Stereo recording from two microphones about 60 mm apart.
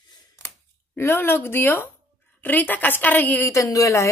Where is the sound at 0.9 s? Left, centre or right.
Left.